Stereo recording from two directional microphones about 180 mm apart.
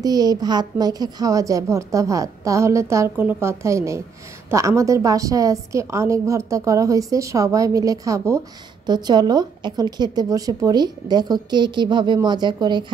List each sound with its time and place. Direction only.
0.0 s a woman's voice: 20° right (ahead or behind)